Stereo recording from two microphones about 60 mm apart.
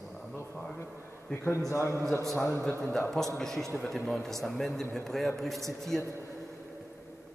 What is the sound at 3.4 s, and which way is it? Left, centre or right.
A man's voice, centre.